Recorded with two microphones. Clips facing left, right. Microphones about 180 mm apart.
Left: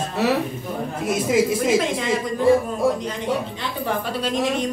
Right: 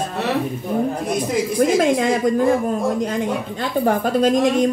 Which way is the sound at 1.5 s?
45° right (ahead or behind).